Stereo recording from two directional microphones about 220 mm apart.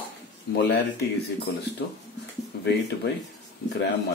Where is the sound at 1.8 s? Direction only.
50° left (ahead or behind).